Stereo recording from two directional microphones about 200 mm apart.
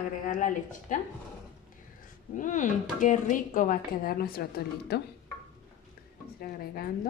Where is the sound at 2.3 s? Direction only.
40° left (ahead or behind).